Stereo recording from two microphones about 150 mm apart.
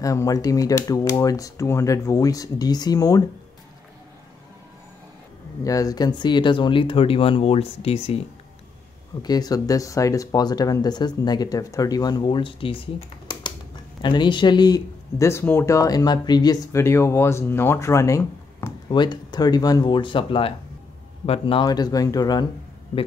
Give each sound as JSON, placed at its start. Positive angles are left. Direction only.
{"t": 0.0, "sound": "speech", "side_deg": 20}
{"t": 5.6, "sound": "speech", "side_deg": 25}
{"t": 9.2, "sound": "speech", "side_deg": 25}
{"t": 18.9, "sound": "speech", "side_deg": 30}